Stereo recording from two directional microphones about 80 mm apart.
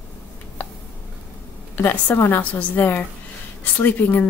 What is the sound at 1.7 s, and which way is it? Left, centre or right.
A woman's voice, left.